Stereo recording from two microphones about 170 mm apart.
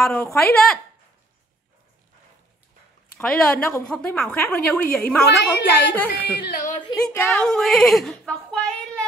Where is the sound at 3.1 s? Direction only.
5° left (ahead or behind).